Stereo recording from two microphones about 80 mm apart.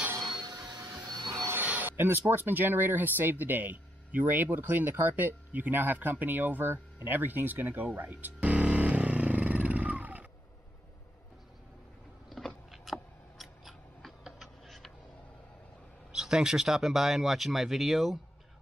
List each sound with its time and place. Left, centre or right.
0.2 s a sound: right
1.0 s wood: right
1.5 s speech: right
12.3 s scissors: centre
16.1 s speech: centre